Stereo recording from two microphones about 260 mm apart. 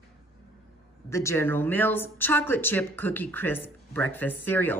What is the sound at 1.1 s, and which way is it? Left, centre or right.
A woman's voice, centre.